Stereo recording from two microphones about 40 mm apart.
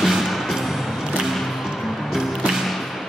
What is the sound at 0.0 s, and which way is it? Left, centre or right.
Music, centre.